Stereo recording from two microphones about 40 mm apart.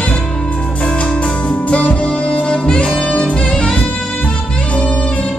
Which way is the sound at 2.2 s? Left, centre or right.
Left.